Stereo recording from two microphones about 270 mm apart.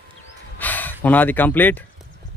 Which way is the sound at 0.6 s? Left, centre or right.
Centre.